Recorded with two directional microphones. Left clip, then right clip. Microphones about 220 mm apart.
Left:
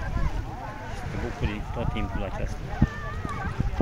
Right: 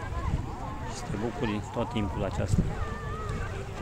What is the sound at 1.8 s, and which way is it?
Speech, 20° right (ahead or behind).